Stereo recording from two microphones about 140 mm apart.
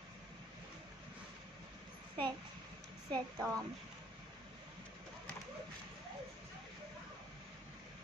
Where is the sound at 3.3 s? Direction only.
Centre (ahead or behind).